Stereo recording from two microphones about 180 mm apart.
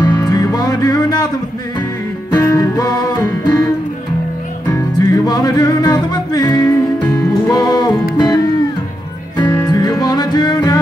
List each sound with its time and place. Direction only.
0.0 s music: 20° left (ahead or behind)
2.3 s music: 20° left (ahead or behind)
4.6 s music: 20° left (ahead or behind)
9.4 s music: 20° left (ahead or behind)